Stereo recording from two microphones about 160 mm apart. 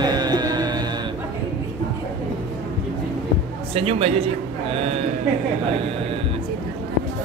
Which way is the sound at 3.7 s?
35° right (ahead or behind).